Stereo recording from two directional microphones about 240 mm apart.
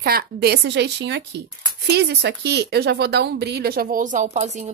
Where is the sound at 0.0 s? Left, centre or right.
Right.